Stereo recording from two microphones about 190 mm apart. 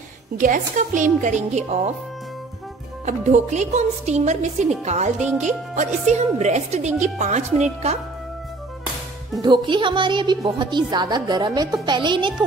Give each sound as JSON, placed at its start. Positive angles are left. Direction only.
{"t": 0.4, "sound": "a woman's voice", "side_deg": -40}
{"t": 3.1, "sound": "a woman's voice", "side_deg": -40}
{"t": 9.4, "sound": "a woman's voice", "side_deg": -25}